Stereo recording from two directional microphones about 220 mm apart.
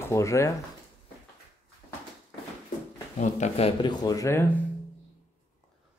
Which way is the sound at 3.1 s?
35° left (ahead or behind).